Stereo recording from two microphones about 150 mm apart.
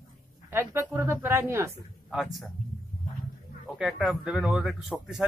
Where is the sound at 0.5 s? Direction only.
15° right (ahead or behind).